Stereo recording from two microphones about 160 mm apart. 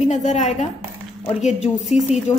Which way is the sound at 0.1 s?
50° left (ahead or behind).